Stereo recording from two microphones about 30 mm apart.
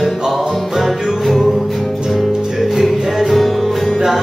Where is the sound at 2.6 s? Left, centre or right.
Centre.